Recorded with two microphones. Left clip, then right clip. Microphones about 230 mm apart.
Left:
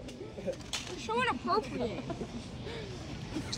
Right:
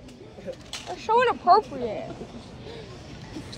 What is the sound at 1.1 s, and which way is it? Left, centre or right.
Speech, left.